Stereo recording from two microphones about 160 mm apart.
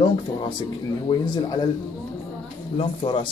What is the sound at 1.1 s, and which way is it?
Speech, 25° left (ahead or behind).